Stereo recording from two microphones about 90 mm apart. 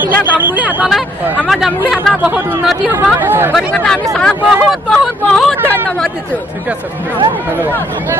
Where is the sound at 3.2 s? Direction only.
25° right (ahead or behind).